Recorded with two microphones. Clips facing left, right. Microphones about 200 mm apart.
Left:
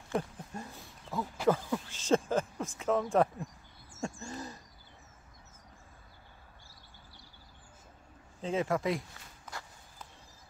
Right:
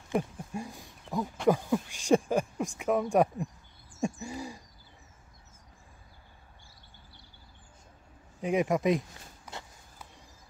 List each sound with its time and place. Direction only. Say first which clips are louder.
0.1 s a sound: right 4 dB; 15° right (ahead or behind)
4.0 s owl: right 5 dB; 10° right (ahead or behind)
8.4 s speech: right 4 dB; 15° right (ahead or behind)